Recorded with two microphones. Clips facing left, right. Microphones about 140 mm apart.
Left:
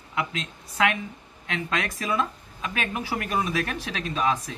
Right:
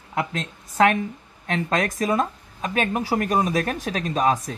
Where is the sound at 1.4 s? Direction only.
40° right (ahead or behind).